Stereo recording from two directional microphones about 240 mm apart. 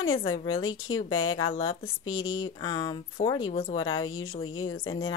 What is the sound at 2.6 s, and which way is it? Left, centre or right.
Speech, centre.